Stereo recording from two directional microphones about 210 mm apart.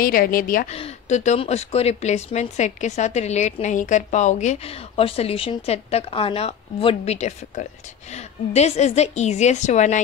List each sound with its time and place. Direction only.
0.0 s a woman's voice: 45° left (ahead or behind)
0.7 s a woman's voice: 30° left (ahead or behind)